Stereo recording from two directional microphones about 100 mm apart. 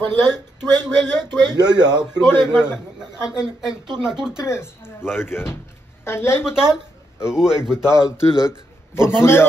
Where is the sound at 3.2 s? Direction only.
5° right (ahead or behind).